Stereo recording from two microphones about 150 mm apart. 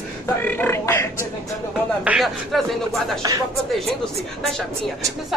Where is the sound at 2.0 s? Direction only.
Centre (ahead or behind).